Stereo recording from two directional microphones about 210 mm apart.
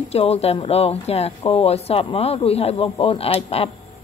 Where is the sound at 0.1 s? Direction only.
30° left (ahead or behind).